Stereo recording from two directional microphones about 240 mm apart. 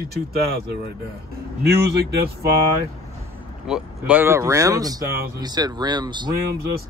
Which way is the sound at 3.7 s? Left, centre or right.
Centre.